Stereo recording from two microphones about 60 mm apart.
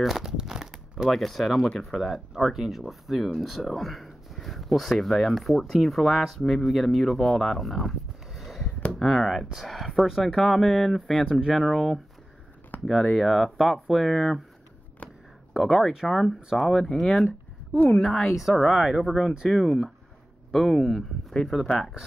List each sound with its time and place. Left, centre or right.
0.0 s crumpling: centre
1.1 s speech: centre
8.4 s a sound: centre
9.0 s speech: centre
11.2 s speech: centre
11.5 s speech: centre
12.7 s a sound: left
13.1 s speech: centre
15.5 s speech: centre
21.6 s speech: centre